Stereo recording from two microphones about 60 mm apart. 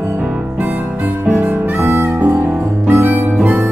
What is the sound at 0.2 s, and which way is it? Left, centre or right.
Harmonica, right.